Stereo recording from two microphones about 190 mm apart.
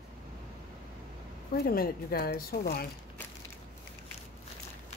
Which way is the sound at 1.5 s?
55° left (ahead or behind).